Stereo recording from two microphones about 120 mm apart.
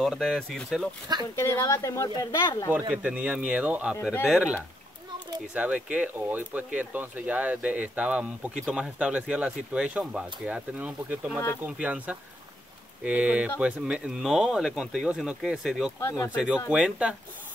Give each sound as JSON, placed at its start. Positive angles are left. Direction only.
{"t": 0.0, "sound": "speech", "side_deg": 0}
{"t": 1.3, "sound": "speech", "side_deg": 20}
{"t": 2.9, "sound": "speech", "side_deg": -10}
{"t": 16.0, "sound": "speech", "side_deg": 25}
{"t": 16.3, "sound": "speech", "side_deg": -10}